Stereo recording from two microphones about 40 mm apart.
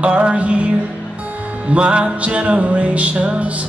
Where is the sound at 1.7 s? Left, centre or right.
Right.